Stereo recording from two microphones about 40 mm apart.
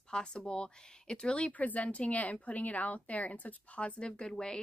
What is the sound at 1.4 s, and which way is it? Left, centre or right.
Speech, left.